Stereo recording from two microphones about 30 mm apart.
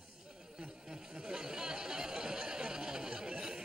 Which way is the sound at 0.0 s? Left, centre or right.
Right.